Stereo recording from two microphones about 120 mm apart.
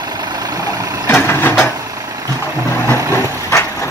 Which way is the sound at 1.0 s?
20° left (ahead or behind).